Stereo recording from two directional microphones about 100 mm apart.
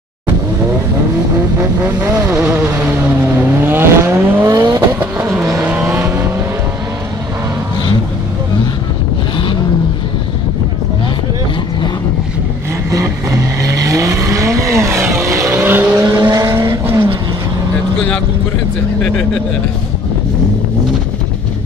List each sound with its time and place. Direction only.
2.0 s vehicle: 30° right (ahead or behind)
4.9 s vehicle: 25° right (ahead or behind)
13.0 s vehicle: 30° right (ahead or behind)
16.0 s vehicle: 35° right (ahead or behind)